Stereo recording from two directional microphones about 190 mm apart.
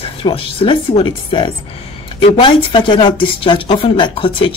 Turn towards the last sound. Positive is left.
turn(degrees=25)  # may be behind; listen again after turning